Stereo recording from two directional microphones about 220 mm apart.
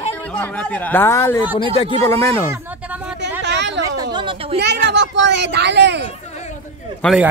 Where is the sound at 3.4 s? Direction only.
50° right (ahead or behind).